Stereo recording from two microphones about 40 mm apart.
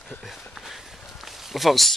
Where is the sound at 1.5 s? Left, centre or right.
Centre.